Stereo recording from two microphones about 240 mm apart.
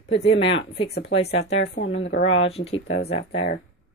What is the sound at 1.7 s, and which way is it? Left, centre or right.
Speech, left.